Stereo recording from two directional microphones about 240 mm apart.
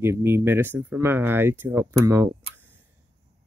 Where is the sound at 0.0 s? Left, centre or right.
Centre.